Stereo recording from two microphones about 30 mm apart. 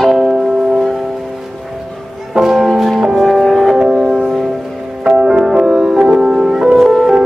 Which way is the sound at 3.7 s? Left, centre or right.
Centre.